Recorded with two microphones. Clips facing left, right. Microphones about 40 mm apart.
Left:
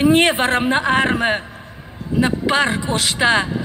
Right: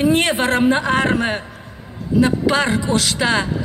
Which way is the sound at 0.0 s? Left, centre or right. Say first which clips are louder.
Left 2 dB; left.